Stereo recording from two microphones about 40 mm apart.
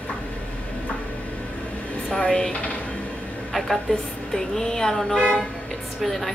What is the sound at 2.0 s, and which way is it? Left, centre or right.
Speech, left.